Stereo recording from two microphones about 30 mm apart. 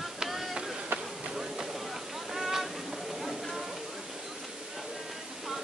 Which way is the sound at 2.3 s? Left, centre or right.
Centre.